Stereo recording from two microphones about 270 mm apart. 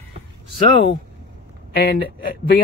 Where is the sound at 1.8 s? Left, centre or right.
Left.